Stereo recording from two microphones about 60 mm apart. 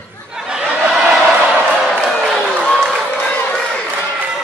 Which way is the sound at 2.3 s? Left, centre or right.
Centre.